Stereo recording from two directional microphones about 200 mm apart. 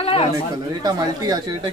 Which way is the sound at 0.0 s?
30° left (ahead or behind).